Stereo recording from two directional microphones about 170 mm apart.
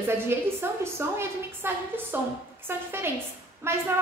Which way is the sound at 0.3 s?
15° right (ahead or behind).